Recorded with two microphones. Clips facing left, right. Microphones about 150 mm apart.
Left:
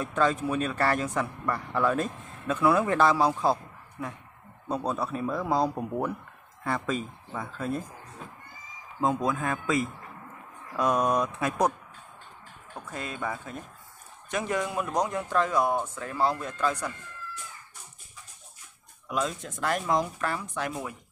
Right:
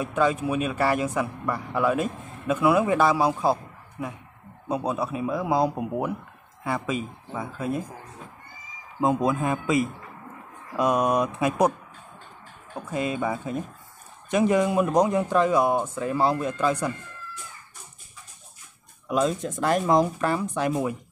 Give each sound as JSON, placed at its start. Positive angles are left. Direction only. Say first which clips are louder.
{"t": 0.0, "sound": "speech", "louder": "right 2 dB", "side_deg": -10}
{"t": 4.6, "sound": "speech", "louder": "right 3 dB", "side_deg": -10}
{"t": 9.0, "sound": "speech", "louder": "right 4 dB", "side_deg": -15}
{"t": 12.7, "sound": "speech", "louder": "right 9 dB", "side_deg": -15}
{"t": 19.0, "sound": "speech", "louder": "right 7 dB", "side_deg": -25}